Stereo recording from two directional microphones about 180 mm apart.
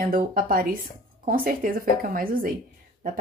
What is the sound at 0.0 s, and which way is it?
Speech, 55° right (ahead or behind).